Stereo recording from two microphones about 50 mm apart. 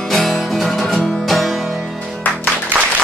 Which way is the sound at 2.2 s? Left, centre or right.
Left.